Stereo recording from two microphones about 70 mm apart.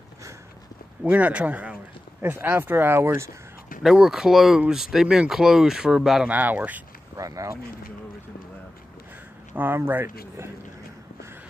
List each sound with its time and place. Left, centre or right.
1.0 s speech: right
3.8 s speech: centre
6.2 s speech: right
7.2 s speech: right
9.6 s speech: right